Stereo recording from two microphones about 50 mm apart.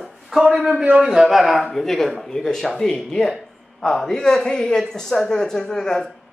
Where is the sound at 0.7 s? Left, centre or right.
Right.